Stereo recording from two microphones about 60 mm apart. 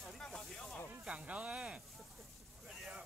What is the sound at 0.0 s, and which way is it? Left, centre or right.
Music, centre.